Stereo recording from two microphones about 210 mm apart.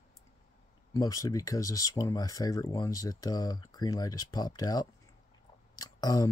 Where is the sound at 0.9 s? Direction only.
15° left (ahead or behind).